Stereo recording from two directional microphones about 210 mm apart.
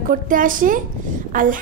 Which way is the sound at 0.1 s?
40° right (ahead or behind).